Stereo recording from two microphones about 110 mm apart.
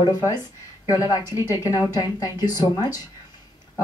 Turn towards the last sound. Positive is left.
turn(degrees=35)  # may be behind; listen again after turning